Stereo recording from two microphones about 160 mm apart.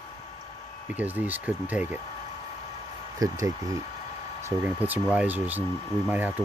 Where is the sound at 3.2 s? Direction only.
20° right (ahead or behind).